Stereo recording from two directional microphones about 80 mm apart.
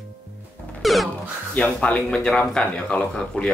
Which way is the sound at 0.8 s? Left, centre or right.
Centre.